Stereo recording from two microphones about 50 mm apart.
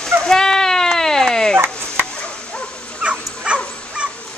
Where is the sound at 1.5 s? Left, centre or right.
Right.